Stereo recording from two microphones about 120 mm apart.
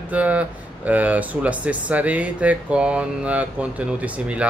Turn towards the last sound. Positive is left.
turn(degrees=-10)  # may be behind; listen again after turning